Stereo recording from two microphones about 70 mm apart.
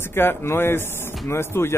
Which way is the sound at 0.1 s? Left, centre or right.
Left.